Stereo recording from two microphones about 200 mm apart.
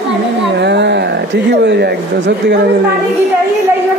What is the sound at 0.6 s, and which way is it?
Speech, 60° right (ahead or behind).